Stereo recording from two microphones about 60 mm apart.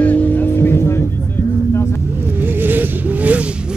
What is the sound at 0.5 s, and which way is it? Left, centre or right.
Music, left.